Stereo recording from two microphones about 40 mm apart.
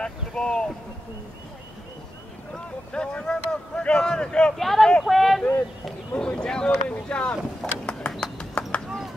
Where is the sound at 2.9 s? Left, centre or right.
Left.